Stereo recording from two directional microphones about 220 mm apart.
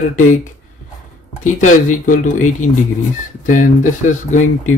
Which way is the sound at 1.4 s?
35° left (ahead or behind).